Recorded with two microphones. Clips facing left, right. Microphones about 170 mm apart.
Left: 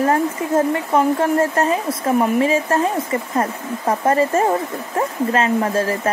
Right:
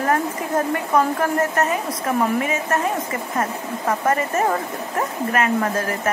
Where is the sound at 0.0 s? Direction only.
25° left (ahead or behind).